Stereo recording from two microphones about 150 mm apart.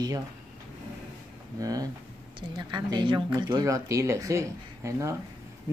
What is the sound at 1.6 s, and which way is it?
Speech, 25° right (ahead or behind).